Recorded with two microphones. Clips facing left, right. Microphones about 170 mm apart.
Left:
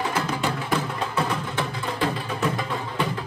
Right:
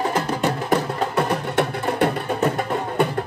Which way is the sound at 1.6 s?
65° right (ahead or behind).